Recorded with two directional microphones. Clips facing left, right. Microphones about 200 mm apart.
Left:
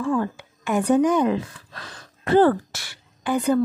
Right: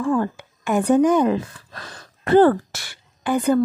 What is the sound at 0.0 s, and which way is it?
Speech, 45° right (ahead or behind).